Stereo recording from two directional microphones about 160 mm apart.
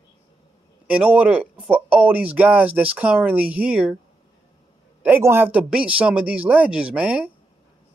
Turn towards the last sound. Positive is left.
turn(degrees=-10)  # may be behind; listen again after turning